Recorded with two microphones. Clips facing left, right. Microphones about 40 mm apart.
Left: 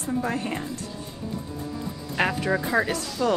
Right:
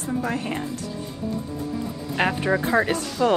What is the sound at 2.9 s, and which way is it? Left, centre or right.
Speech, right.